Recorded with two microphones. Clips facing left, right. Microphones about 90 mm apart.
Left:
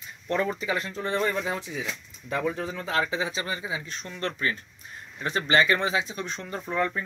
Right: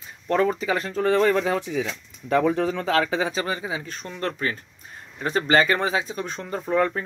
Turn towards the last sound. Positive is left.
turn(degrees=-40)  # may be behind; listen again after turning